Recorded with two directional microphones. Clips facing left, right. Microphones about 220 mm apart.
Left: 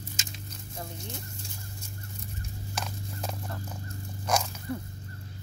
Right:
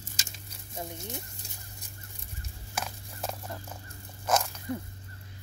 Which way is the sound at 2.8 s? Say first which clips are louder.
Right 1 dB; centre (ahead or behind).